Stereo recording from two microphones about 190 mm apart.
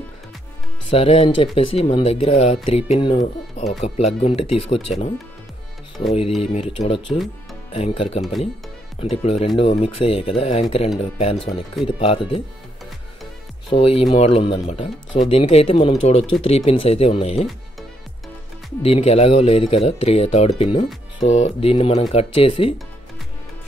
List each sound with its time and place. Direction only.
0.8 s speech: 30° left (ahead or behind)
6.4 s speech: 30° left (ahead or behind)
13.7 s speech: 30° left (ahead or behind)
18.8 s speech: 30° left (ahead or behind)